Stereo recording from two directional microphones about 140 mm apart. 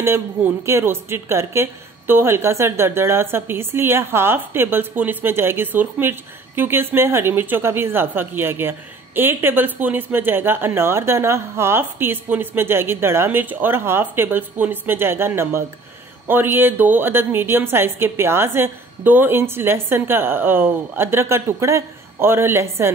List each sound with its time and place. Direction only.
0.0 s a woman's voice: 20° right (ahead or behind)